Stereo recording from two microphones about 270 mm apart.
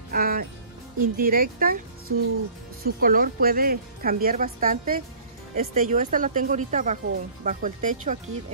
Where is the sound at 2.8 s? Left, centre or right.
Right.